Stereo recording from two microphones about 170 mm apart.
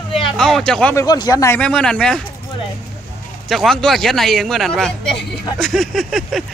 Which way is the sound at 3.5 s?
Centre (ahead or behind).